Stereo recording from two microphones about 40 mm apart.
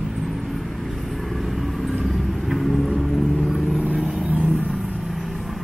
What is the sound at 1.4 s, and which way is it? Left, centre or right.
Vehicle, centre.